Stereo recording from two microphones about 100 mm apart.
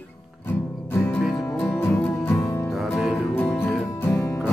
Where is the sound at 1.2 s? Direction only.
10° left (ahead or behind).